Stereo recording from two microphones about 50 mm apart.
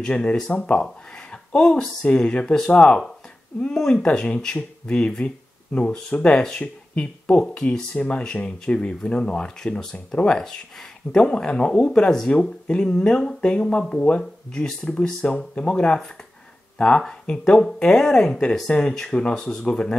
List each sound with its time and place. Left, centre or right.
0.0 s speech: centre